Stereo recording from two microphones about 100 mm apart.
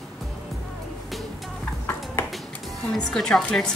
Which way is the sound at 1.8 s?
25° left (ahead or behind).